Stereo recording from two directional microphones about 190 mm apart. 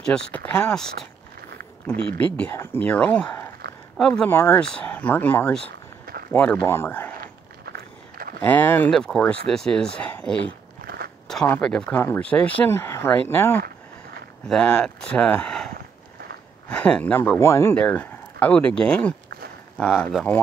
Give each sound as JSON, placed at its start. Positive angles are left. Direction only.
{"t": 0.0, "sound": "speech", "side_deg": 5}
{"t": 2.1, "sound": "speech", "side_deg": 5}
{"t": 7.2, "sound": "biting", "side_deg": -55}
{"t": 8.4, "sound": "speech", "side_deg": 10}